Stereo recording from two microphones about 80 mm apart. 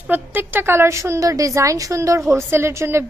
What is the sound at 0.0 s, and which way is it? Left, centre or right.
A woman's voice, right.